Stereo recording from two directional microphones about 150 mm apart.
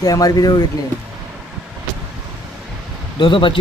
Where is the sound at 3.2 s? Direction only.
35° left (ahead or behind).